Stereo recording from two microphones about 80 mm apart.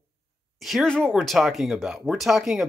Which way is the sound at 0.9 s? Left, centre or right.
Centre.